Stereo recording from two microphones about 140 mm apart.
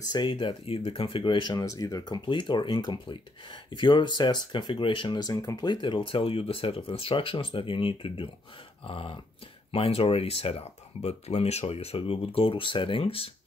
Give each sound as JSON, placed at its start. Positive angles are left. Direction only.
{"t": 0.1, "sound": "speech", "side_deg": 35}